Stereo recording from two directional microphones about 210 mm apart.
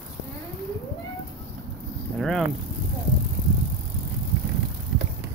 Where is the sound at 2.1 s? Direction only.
Centre (ahead or behind).